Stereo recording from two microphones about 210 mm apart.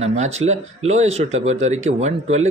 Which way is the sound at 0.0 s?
30° right (ahead or behind).